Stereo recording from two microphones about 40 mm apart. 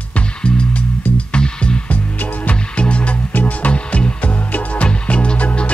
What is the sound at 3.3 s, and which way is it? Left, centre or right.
Music, left.